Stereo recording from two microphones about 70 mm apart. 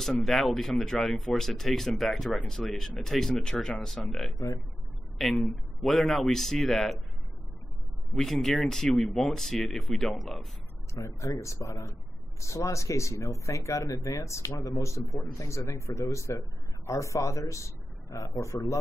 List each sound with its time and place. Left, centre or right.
0.0 s speech: centre
8.1 s speech: centre
11.0 s speech: left